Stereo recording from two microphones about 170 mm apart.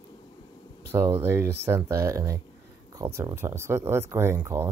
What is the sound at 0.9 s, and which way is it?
Speech, 15° right (ahead or behind).